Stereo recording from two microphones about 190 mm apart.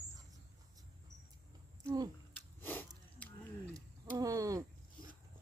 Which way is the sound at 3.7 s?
20° right (ahead or behind).